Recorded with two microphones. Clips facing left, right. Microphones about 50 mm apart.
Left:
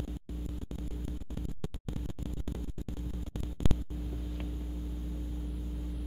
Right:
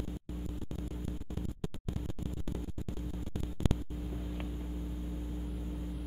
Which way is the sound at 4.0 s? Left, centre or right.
Centre.